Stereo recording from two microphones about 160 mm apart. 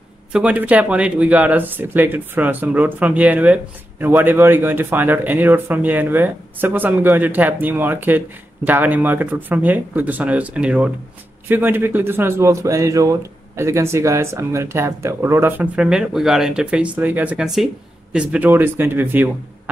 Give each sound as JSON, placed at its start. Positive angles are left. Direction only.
{"t": 0.3, "sound": "speech", "side_deg": -10}